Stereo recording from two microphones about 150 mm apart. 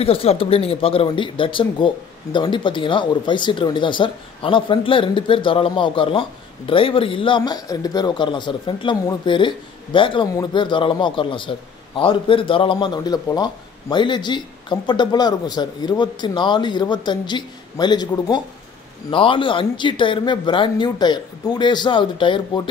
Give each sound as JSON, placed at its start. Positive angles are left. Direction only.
{"t": 0.0, "sound": "a man's voice", "side_deg": 40}